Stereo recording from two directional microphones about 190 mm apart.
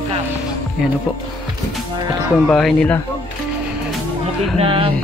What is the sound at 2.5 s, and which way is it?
Speech, 5° left (ahead or behind).